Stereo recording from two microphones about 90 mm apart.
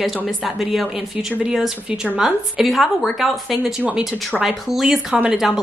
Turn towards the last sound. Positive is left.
turn(degrees=-5)  # may be behind; listen again after turning